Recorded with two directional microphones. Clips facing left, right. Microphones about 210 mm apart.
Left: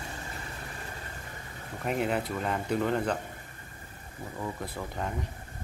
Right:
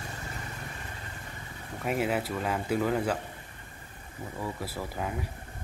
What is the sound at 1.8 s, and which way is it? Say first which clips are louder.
Speech: even; 5° right (ahead or behind).